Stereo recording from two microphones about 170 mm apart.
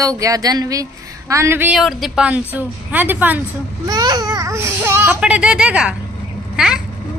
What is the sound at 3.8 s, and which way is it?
A child's voice, 25° right (ahead or behind).